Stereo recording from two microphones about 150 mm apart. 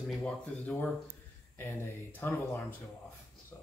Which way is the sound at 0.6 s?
10° left (ahead or behind).